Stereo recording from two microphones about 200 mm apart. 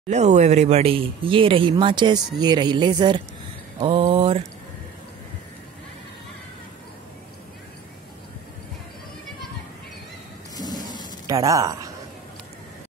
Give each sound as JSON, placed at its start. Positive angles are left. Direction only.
{"t": 0.1, "sound": "speech", "side_deg": -35}
{"t": 10.5, "sound": "a sound", "side_deg": 20}
{"t": 11.2, "sound": "speech", "side_deg": -15}